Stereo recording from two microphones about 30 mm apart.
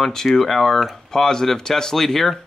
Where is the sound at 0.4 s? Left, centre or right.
Centre.